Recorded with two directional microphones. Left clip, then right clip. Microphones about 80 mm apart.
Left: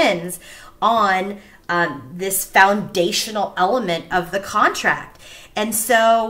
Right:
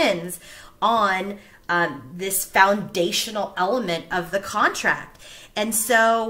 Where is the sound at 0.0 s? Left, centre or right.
Right.